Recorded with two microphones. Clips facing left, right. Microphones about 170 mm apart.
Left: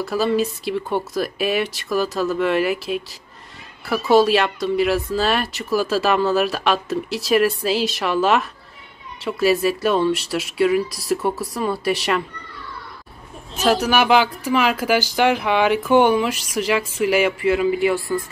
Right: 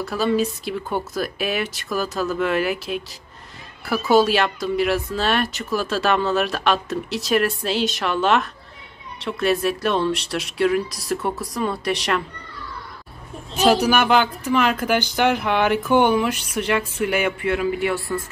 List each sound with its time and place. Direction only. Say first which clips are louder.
0.0 s speech: left 1 dB; centre (ahead or behind)
13.6 s speech: right 1 dB; centre (ahead or behind)